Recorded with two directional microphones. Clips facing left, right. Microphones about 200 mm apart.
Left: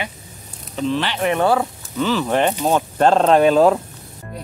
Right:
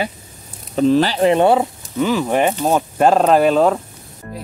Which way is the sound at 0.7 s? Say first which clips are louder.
Right 7 dB; 40° right (ahead or behind).